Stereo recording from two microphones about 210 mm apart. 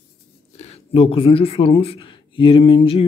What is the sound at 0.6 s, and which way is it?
Speech, 30° left (ahead or behind).